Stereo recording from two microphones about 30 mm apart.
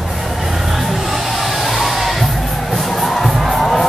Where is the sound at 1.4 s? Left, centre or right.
Centre.